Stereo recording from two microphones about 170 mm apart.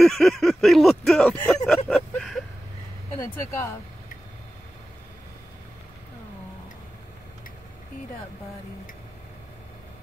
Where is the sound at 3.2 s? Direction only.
15° left (ahead or behind).